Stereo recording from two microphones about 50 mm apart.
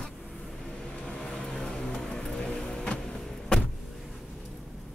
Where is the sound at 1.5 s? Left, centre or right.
Centre.